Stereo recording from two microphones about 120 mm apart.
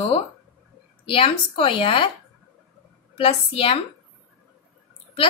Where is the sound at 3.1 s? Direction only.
50° left (ahead or behind).